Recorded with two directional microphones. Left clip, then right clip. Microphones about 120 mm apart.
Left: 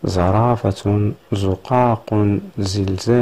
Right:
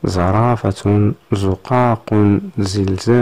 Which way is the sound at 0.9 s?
35° right (ahead or behind).